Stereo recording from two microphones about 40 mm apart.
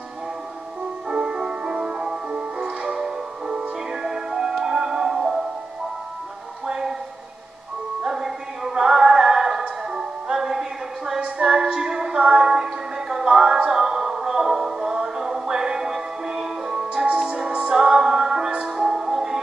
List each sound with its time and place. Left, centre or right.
1.0 s music: centre
6.6 s a sound: centre
8.0 s music: centre
11.1 s music: right
11.4 s music: right
12.4 s music: centre
13.3 s music: right
16.9 s music: right; by 18.5 s centre
18.5 s music: right
18.9 s music: centre